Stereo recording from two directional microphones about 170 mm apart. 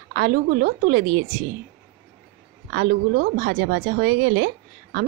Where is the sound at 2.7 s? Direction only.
80° right.